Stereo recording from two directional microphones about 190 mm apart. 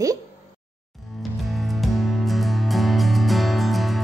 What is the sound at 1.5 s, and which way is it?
Music, centre (ahead or behind).